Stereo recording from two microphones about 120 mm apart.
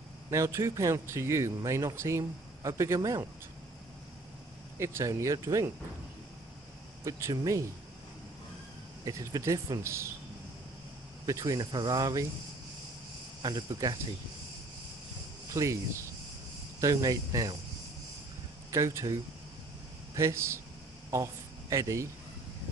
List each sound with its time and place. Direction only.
0.3 s a man's voice: 25° right (ahead or behind)
4.7 s a man's voice: 25° right (ahead or behind)
7.1 s a man's voice: 25° right (ahead or behind)
9.0 s a man's voice: 25° right (ahead or behind)
11.2 s a man's voice: 30° right (ahead or behind)
13.4 s speech: 35° right (ahead or behind)
15.5 s a man's voice: 25° right (ahead or behind)
18.7 s speech: 25° right (ahead or behind)
20.2 s a man's voice: 25° right (ahead or behind)